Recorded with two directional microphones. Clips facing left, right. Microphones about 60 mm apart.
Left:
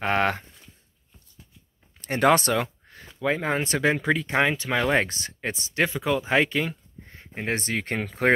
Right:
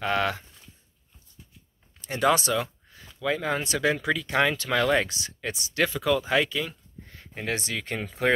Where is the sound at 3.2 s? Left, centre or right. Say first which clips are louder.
Left 2 dB; left.